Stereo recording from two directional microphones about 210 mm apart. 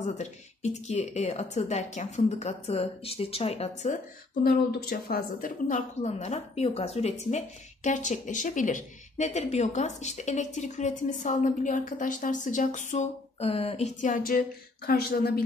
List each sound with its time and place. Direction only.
0.2 s speech: 30° left (ahead or behind)